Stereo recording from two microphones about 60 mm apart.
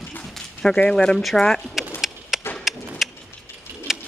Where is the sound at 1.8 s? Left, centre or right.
Centre.